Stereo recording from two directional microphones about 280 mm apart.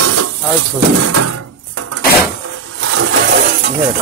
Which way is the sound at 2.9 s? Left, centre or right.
Right.